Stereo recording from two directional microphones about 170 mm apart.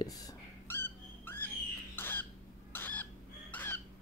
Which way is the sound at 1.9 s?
10° left (ahead or behind).